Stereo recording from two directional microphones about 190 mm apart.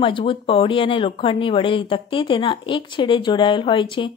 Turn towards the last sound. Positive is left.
turn(degrees=25)  # may be behind; listen again after turning